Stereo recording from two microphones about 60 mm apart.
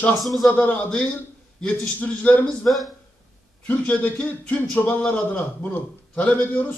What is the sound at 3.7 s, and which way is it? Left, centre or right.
Speech, left.